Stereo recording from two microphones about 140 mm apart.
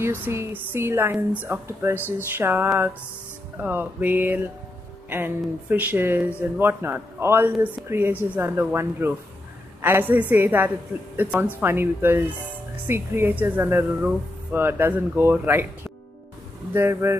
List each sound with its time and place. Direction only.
0.0 s speech: 20° right (ahead or behind)
16.7 s speech: 20° right (ahead or behind)